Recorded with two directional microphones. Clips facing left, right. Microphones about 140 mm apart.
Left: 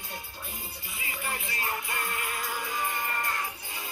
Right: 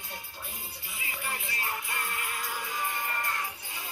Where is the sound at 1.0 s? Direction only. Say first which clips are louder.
Left 2 dB; 45° left (ahead or behind).